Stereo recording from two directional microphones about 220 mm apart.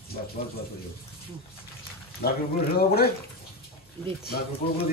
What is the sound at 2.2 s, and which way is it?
Speech, 45° left (ahead or behind).